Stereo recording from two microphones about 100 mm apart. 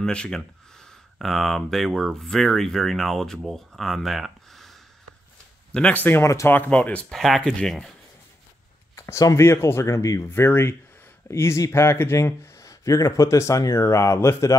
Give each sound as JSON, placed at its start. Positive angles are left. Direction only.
{"t": 0.0, "sound": "speech", "side_deg": 10}
{"t": 6.5, "sound": "speech", "side_deg": 15}
{"t": 7.1, "sound": "speech", "side_deg": 0}
{"t": 8.9, "sound": "speech", "side_deg": 30}